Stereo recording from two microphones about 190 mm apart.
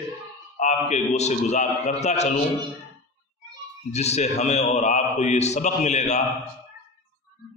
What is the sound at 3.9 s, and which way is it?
A man's voice, 35° left (ahead or behind).